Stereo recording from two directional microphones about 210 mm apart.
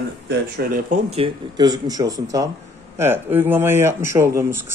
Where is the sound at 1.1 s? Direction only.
25° right (ahead or behind).